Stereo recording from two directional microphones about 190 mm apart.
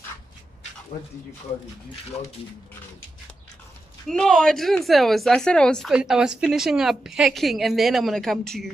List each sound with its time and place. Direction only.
4.1 s a woman's voice: 5° left (ahead or behind)